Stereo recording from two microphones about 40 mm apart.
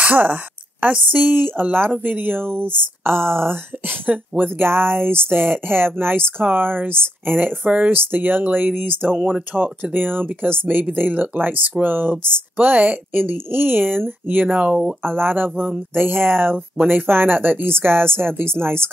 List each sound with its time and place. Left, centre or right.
0.0 s speech: right
6.4 s speech: right
7.9 s speech: right
9.1 s speech: right
9.5 s speech: right
11.0 s speech: right
14.6 s speech: right
15.1 s speech: right